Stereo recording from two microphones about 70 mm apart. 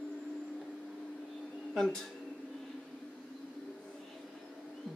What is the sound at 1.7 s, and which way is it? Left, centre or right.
Speech, centre.